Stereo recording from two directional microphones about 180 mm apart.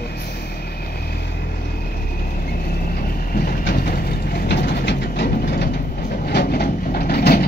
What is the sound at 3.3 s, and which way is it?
Vehicle, 55° left (ahead or behind).